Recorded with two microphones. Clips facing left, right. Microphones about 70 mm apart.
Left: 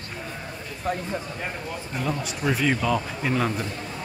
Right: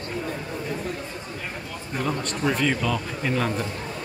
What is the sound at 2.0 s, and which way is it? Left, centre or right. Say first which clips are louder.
Speech: right 2 dB; centre.